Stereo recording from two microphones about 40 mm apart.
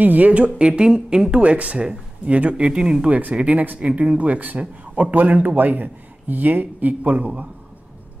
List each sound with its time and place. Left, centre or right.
0.0 s a man's voice: right
0.6 s speech: right
1.4 s a man's voice: right
3.4 s a man's voice: right